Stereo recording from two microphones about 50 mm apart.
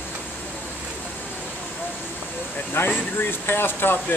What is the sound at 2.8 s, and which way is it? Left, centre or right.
Speech, left.